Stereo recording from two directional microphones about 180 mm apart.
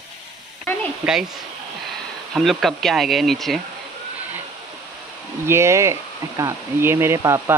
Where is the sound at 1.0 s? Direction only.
5° right (ahead or behind).